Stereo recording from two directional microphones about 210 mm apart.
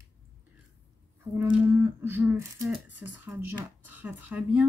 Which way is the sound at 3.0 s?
10° right (ahead or behind).